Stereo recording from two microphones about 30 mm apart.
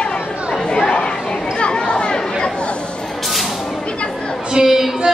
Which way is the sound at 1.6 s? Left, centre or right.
Left.